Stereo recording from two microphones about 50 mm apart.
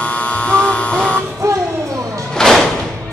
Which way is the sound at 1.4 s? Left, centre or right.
Right.